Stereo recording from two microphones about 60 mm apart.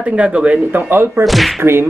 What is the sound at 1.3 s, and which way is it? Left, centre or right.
Whip, centre.